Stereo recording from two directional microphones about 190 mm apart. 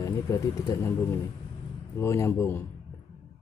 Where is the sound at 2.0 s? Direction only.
15° left (ahead or behind).